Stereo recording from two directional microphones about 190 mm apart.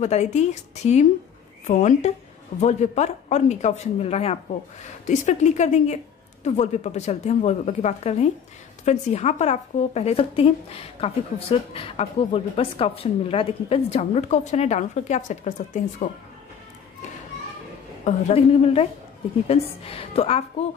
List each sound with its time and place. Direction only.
0.0 s speech: 35° left (ahead or behind)
18.0 s speech: 30° left (ahead or behind)